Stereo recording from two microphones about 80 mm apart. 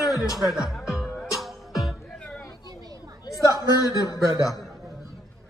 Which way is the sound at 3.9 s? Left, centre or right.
Left.